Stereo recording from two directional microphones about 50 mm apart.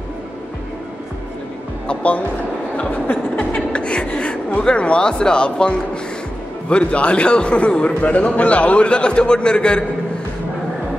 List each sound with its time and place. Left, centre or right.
1.9 s a man's voice: left
2.9 s chuckle: left
4.6 s a man's voice: left